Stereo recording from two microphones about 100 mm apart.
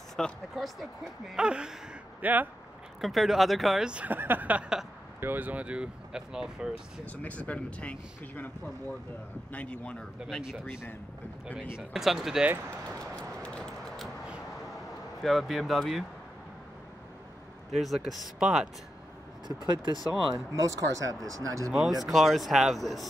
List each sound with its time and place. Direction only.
0.1 s speech: centre (ahead or behind); by 2.4 s 15° right (ahead or behind)
3.0 s speech: centre (ahead or behind)
7.1 s speech: 15° left (ahead or behind)
11.8 s speech: 5° right (ahead or behind)
12.8 s vehicle: 10° left (ahead or behind)
15.2 s speech: centre (ahead or behind)
17.7 s speech: centre (ahead or behind)
19.4 s speech: 45° right (ahead or behind)
20.3 s speech: 35° right (ahead or behind)
22.0 s speech: centre (ahead or behind)